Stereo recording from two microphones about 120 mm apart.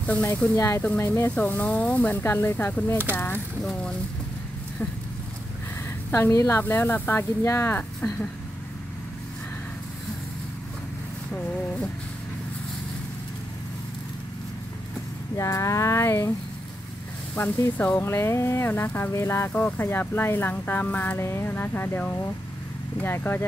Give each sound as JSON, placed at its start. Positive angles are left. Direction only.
{"t": 0.0, "sound": "speech", "side_deg": 15}
{"t": 6.1, "sound": "speech", "side_deg": 20}
{"t": 15.3, "sound": "speech", "side_deg": 25}
{"t": 17.4, "sound": "speech", "side_deg": 15}